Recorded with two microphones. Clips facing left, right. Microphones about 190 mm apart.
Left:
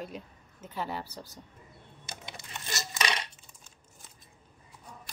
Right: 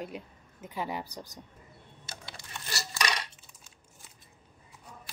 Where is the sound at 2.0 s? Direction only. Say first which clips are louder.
Left 2 dB; 20° left (ahead or behind).